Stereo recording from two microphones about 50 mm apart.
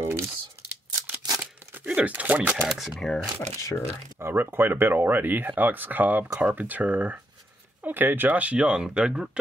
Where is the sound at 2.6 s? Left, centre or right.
Centre.